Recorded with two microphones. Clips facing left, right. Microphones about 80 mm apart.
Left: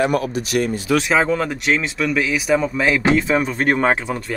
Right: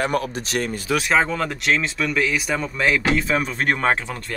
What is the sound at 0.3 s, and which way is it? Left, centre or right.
Speech, right.